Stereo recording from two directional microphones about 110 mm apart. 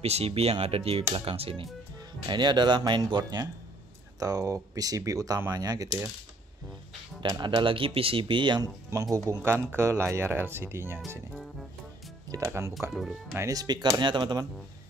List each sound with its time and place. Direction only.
0.0 s speech: 70° right (ahead or behind)
2.2 s speech: 40° right (ahead or behind)
7.2 s speech: 45° right (ahead or behind); by 11.0 s 20° right (ahead or behind)
12.3 s speech: 25° right (ahead or behind)
12.9 s speech: centre (ahead or behind)
13.4 s speech: 35° right (ahead or behind)